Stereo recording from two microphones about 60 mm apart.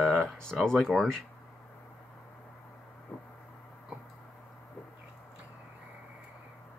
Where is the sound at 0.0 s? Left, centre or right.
Centre.